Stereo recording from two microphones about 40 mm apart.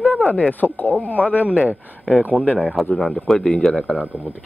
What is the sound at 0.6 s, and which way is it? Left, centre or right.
Speech, left.